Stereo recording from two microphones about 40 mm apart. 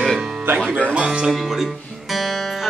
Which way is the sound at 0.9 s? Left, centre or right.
Right.